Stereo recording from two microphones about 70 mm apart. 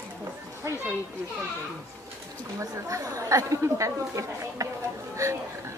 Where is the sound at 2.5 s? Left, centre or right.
Right.